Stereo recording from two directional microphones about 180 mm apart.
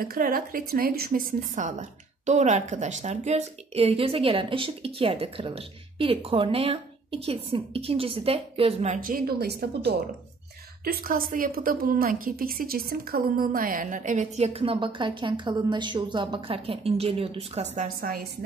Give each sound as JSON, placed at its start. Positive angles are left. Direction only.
{"t": 0.0, "sound": "a woman's voice", "side_deg": -55}
{"t": 17.7, "sound": "a woman's voice", "side_deg": -50}